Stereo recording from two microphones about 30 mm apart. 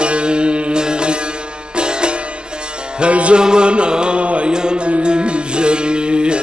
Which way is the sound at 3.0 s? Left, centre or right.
Right.